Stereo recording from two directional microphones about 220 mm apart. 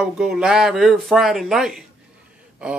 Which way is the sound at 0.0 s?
Centre (ahead or behind).